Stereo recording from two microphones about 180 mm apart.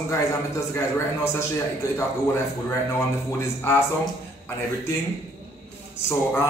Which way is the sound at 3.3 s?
15° left (ahead or behind).